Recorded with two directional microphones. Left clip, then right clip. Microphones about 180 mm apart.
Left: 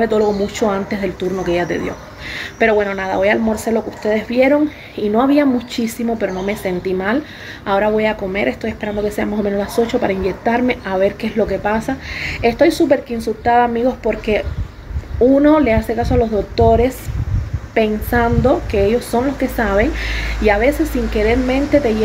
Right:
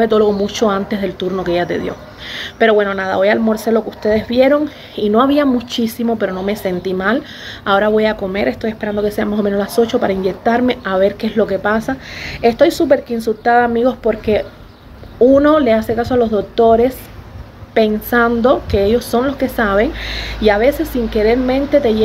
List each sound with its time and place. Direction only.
0.0 s a woman's voice: 15° right (ahead or behind)